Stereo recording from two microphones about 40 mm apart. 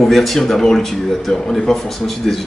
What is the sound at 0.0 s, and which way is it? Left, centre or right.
Speech, centre.